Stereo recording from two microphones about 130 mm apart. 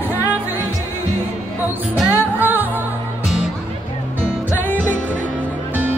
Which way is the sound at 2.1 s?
15° right (ahead or behind).